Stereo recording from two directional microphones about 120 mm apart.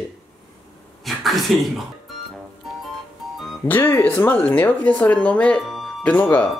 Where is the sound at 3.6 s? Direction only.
20° left (ahead or behind); by 5.8 s centre (ahead or behind).